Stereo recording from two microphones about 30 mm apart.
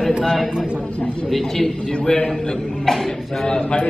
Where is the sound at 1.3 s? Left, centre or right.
Centre.